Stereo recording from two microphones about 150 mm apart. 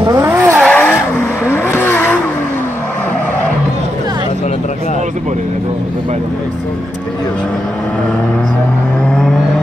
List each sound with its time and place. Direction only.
0.0 s vehicle: 25° right (ahead or behind)
0.3 s vehicle: 10° right (ahead or behind)
0.6 s vehicle: 10° left (ahead or behind)